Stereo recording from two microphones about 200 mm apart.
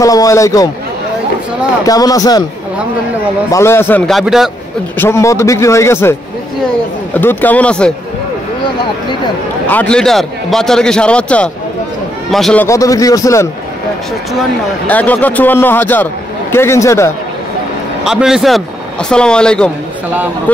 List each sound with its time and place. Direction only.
0.0 s a man's voice: 15° left (ahead or behind)
1.9 s speech: 20° left (ahead or behind)
3.5 s a man's voice: 10° left (ahead or behind)
4.1 s a man's voice: centre (ahead or behind)
4.9 s a man's voice: 10° left (ahead or behind)
7.2 s a man's voice: 10° left (ahead or behind)
9.7 s a man's voice: 5° left (ahead or behind)
12.6 s a man's voice: 15° left (ahead or behind)
14.9 s a man's voice: 10° left (ahead or behind)
18.0 s a man's voice: centre (ahead or behind)